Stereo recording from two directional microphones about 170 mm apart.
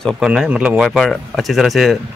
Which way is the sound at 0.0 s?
5° right (ahead or behind).